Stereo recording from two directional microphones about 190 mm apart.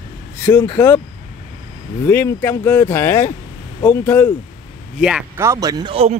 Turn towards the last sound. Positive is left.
turn(degrees=-30)  # may be behind; listen again after turning